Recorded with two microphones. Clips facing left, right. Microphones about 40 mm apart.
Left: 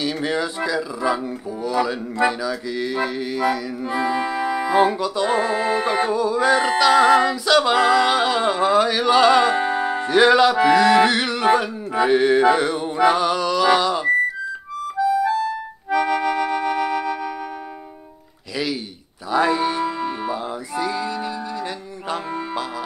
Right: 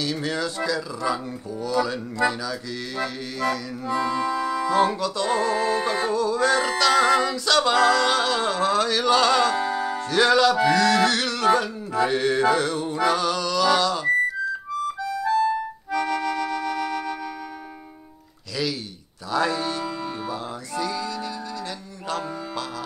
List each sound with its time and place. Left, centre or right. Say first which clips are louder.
0.0 s music: left 3 dB; centre
3.9 s music: left 1 dB; left
12.1 s mantra: left 7 dB; centre
15.9 s music: left 5 dB; left
19.3 s music: left 5 dB; left